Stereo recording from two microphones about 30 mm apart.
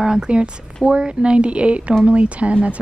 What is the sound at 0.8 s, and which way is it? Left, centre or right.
Speech, right.